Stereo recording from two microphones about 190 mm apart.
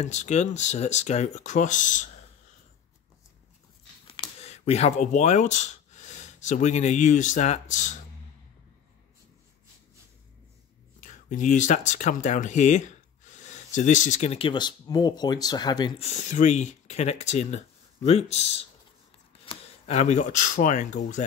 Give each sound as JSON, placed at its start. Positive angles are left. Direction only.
{"t": 0.0, "sound": "speech", "side_deg": 35}
{"t": 4.1, "sound": "speech", "side_deg": 30}
{"t": 11.0, "sound": "speech", "side_deg": 40}
{"t": 16.0, "sound": "speech", "side_deg": 40}